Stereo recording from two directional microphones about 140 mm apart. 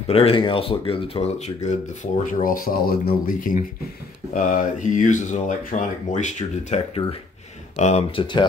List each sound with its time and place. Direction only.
0.0 s speech: 45° left (ahead or behind)
2.4 s speech: 90° left; by 8.0 s 55° left (ahead or behind)
8.2 s speech: 35° left (ahead or behind)